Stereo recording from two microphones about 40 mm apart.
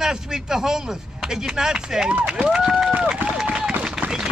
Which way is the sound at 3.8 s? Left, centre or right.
Right.